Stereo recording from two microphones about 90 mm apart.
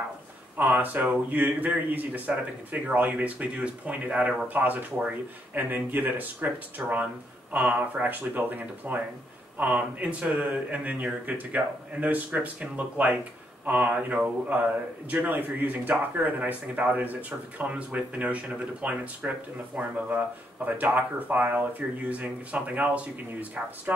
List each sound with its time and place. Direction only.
0.6 s speech: 20° right (ahead or behind)